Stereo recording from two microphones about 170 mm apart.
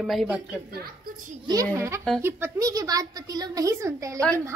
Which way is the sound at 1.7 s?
15° right (ahead or behind).